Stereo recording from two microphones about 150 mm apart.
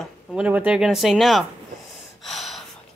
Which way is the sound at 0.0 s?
5° right (ahead or behind).